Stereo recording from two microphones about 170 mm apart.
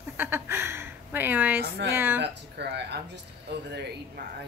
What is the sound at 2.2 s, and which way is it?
Speech, 90° right.